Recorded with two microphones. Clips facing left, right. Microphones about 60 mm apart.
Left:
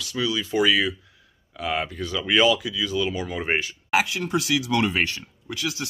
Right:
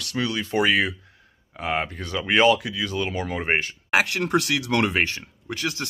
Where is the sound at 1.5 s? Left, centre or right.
Right.